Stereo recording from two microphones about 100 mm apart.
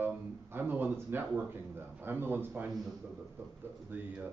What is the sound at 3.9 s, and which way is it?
Speech, 20° right (ahead or behind).